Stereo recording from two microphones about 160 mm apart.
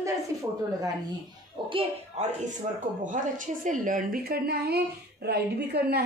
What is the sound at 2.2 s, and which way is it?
A woman's voice, 45° right (ahead or behind).